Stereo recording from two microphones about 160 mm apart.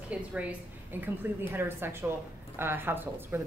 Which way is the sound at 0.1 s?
10° right (ahead or behind).